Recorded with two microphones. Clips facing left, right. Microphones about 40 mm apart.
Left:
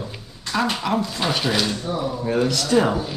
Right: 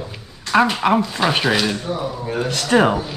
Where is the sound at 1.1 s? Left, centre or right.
Right.